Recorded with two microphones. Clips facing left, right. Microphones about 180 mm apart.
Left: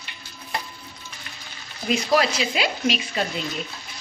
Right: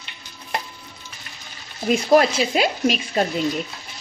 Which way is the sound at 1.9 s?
45° right (ahead or behind).